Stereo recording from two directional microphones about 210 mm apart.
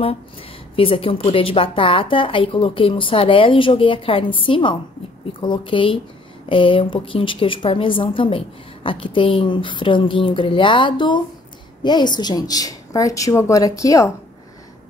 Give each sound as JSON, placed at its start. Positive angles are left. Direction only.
{"t": 0.7, "sound": "a woman's voice", "side_deg": 25}